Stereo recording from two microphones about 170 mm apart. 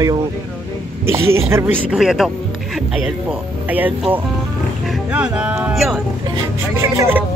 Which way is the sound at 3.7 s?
10° right (ahead or behind).